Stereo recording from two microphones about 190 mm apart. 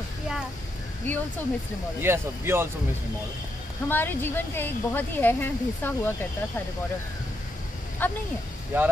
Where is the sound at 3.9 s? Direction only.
10° left (ahead or behind).